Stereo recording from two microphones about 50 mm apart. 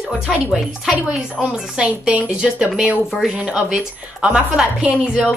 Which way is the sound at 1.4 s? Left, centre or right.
Right.